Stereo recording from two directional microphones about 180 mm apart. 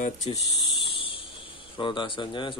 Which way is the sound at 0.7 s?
30° left (ahead or behind).